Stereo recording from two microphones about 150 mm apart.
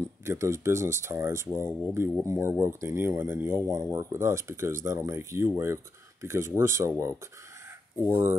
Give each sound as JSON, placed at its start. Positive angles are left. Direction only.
{"t": 0.2, "sound": "speech", "side_deg": -20}